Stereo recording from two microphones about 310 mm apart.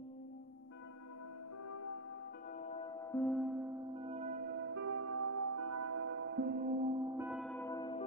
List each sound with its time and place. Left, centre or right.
2.6 s music: centre
4.0 s music: right
6.0 s music: right; by 8.0 s centre